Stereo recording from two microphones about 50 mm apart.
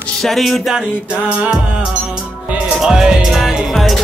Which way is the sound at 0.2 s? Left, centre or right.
Centre.